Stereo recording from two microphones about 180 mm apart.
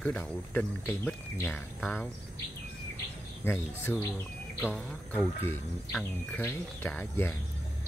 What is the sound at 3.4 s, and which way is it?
Speech, 10° left (ahead or behind).